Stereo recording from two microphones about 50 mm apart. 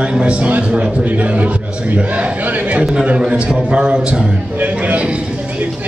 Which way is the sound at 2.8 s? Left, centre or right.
Centre.